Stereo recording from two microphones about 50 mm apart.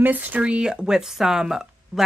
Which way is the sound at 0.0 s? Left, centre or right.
Right.